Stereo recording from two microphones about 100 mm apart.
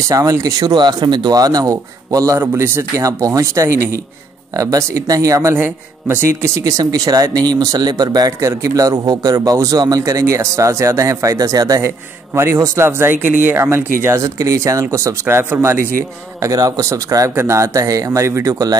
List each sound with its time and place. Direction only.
0.1 s speech: 35° right (ahead or behind)
2.4 s speech: 20° right (ahead or behind)